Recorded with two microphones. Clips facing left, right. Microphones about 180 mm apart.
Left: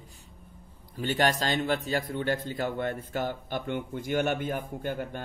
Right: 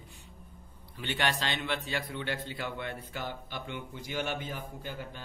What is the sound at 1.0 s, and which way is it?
A man's voice, 40° left (ahead or behind).